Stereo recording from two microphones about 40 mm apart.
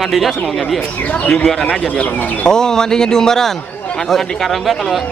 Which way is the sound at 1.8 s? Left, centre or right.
Left.